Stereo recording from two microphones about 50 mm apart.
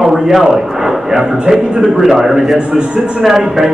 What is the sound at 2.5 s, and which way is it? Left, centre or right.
A man's voice, centre.